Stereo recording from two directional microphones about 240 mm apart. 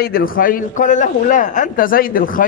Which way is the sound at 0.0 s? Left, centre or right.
Left.